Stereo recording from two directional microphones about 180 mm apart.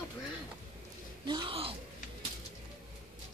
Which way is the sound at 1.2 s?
25° right (ahead or behind).